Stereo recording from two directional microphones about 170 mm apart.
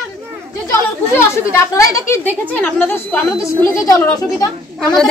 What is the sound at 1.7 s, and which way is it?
A woman's voice, 20° left (ahead or behind).